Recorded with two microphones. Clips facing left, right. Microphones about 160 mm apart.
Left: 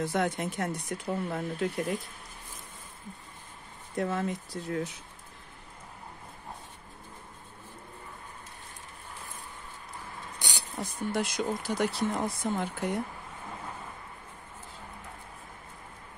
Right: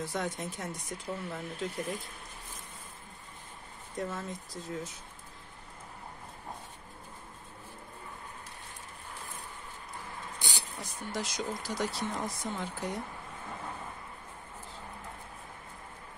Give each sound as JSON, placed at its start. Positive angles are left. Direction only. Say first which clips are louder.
{"t": 0.0, "sound": "speech", "louder": "left 6 dB", "side_deg": 65}
{"t": 3.9, "sound": "speech", "louder": "left 6 dB", "side_deg": 65}
{"t": 10.8, "sound": "speech", "louder": "left 7 dB", "side_deg": 55}